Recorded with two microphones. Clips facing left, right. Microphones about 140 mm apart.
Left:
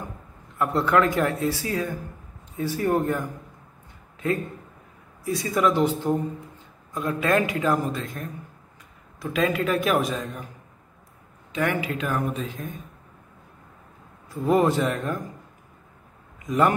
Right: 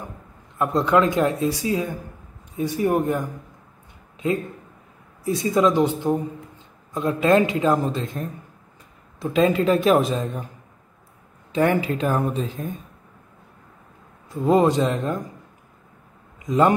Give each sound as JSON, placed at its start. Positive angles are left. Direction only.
{"t": 0.6, "sound": "a man's voice", "side_deg": -20}
{"t": 5.2, "sound": "speech", "side_deg": -25}
{"t": 11.5, "sound": "speech", "side_deg": -35}
{"t": 14.3, "sound": "speech", "side_deg": -20}
{"t": 16.4, "sound": "a man's voice", "side_deg": -20}